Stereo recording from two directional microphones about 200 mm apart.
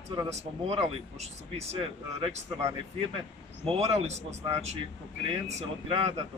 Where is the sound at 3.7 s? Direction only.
30° right (ahead or behind).